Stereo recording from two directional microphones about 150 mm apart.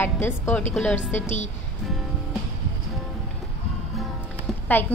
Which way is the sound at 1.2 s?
50° left (ahead or behind).